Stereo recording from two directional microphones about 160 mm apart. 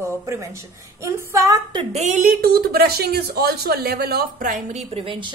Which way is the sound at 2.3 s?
70° right (ahead or behind).